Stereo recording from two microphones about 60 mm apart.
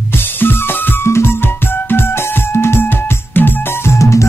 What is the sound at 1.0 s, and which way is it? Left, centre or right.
Music, left.